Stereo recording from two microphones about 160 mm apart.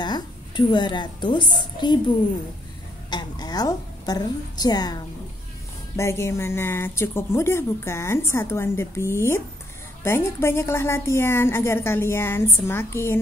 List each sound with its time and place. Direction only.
0.0 s a woman's voice: 30° left (ahead or behind)
5.9 s a woman's voice: 15° left (ahead or behind)